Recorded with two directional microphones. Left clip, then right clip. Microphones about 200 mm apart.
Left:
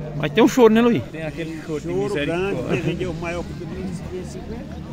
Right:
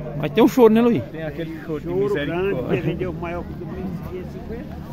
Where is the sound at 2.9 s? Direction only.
55° left (ahead or behind).